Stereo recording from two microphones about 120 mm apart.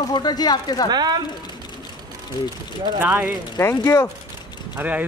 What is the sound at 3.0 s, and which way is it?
Speech, 15° right (ahead or behind).